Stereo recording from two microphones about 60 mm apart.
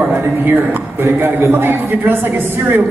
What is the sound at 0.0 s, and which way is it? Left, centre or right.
A man's voice, right.